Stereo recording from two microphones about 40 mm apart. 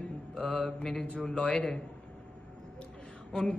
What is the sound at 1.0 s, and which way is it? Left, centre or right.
Speech, left.